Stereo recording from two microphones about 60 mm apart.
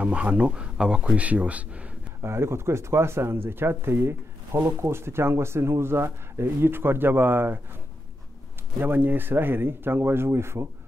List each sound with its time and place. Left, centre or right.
0.0 s speech: centre
2.2 s speech: right
8.7 s speech: right